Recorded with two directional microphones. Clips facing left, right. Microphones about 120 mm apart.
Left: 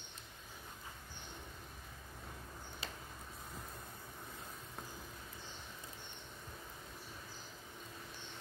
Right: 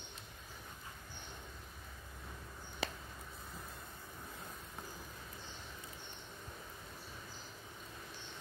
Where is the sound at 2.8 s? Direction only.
65° right (ahead or behind).